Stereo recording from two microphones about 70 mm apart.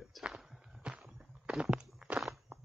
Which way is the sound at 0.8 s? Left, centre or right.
Centre.